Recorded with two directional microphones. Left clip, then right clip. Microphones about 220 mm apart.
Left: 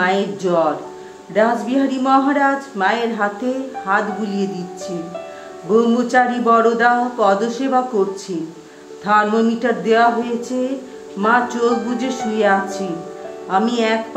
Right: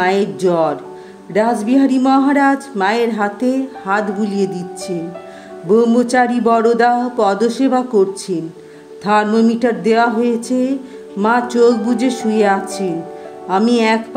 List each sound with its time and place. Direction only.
0.0 s speech: 40° right (ahead or behind)
9.0 s speech: 40° right (ahead or behind)